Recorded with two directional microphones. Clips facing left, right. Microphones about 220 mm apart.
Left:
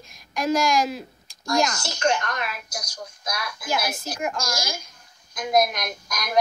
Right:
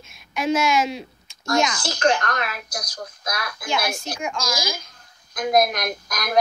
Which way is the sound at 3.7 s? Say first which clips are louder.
Right 1 dB; 5° left (ahead or behind).